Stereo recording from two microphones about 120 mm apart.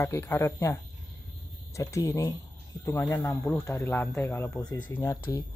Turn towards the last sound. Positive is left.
turn(degrees=20)  # may be behind; listen again after turning